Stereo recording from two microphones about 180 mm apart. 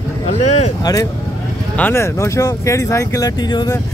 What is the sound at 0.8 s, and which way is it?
Speech, 20° left (ahead or behind).